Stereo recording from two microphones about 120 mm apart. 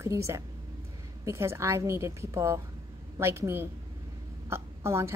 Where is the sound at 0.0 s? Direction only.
25° right (ahead or behind).